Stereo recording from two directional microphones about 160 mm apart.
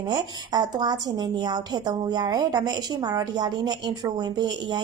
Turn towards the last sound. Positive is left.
turn(degrees=-25)  # may be behind; listen again after turning